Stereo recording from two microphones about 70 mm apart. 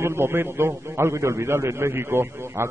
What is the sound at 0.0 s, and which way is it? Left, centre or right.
A man's voice, right.